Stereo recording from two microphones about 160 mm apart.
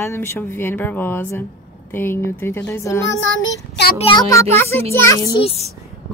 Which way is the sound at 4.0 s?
25° left (ahead or behind).